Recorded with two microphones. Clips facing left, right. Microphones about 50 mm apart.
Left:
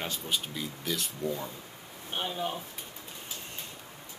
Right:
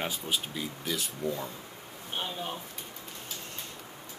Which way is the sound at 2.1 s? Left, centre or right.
Centre.